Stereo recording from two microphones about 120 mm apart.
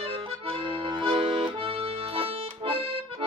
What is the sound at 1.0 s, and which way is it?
Accordion, 45° right (ahead or behind).